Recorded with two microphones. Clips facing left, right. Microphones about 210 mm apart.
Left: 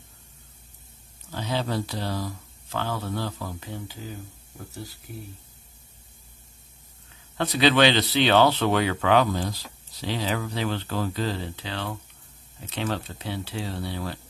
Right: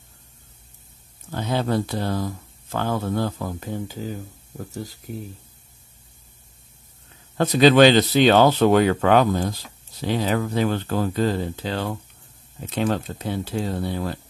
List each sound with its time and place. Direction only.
1.3 s speech: 50° right (ahead or behind)
7.3 s speech: 45° right (ahead or behind)